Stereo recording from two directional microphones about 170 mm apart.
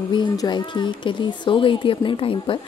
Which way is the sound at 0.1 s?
25° left (ahead or behind).